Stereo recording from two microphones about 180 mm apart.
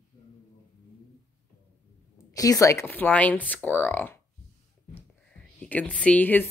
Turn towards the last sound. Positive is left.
turn(degrees=10)  # may be behind; listen again after turning